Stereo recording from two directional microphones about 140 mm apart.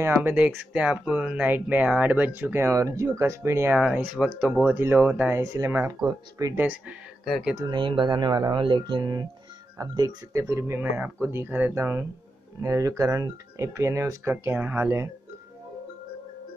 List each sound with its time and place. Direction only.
0.0 s speech: 15° right (ahead or behind)
6.6 s speech: 10° right (ahead or behind)
7.2 s speech: centre (ahead or behind)
7.5 s speech: 35° right (ahead or behind); by 15.0 s 15° right (ahead or behind)